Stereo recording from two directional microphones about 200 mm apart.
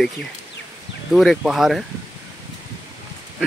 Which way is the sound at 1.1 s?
Centre (ahead or behind).